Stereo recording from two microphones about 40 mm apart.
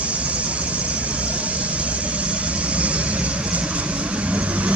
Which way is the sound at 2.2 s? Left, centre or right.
Right.